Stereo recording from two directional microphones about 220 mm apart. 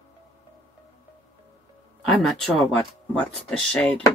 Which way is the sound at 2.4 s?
5° left (ahead or behind).